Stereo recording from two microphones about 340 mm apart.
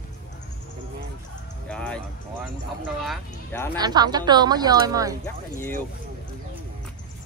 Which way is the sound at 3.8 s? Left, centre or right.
Centre.